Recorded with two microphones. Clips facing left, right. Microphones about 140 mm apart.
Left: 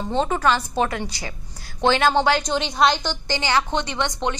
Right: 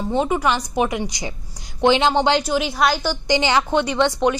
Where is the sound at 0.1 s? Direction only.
10° right (ahead or behind).